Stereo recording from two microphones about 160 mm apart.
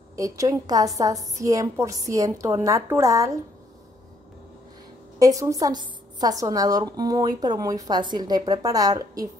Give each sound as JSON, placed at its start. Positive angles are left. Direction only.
{"t": 0.1, "sound": "a woman's voice", "side_deg": -20}
{"t": 5.2, "sound": "a woman's voice", "side_deg": -20}